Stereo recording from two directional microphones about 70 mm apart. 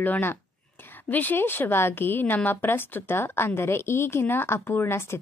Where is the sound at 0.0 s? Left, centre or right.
Left.